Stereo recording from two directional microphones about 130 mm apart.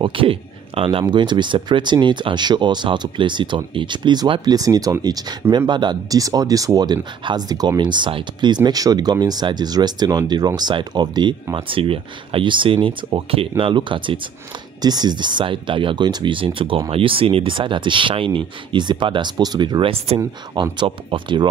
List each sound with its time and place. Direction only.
0.0 s speech: 45° right (ahead or behind)
20.1 s speech: 55° right (ahead or behind)
20.7 s speech: 40° right (ahead or behind)